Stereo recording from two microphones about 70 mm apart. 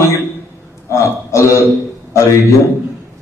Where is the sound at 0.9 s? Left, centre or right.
Left.